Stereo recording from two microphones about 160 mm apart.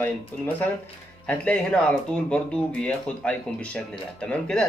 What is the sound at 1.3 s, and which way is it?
Speech, 5° left (ahead or behind).